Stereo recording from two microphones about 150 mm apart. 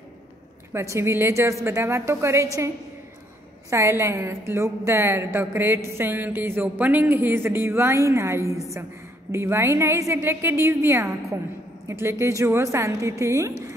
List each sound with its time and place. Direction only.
0.7 s a woman's voice: 20° right (ahead or behind)
3.7 s a woman's voice: 20° right (ahead or behind)